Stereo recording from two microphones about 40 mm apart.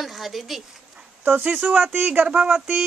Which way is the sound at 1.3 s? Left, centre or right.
Right.